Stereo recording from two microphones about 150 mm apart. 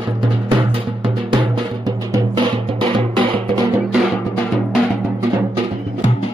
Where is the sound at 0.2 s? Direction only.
30° right (ahead or behind).